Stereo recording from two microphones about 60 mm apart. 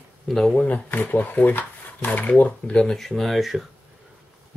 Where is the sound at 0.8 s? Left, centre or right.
Left; by 3.6 s centre.